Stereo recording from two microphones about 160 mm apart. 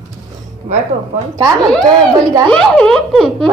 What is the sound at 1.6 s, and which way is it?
A woman's voice, 5° left (ahead or behind).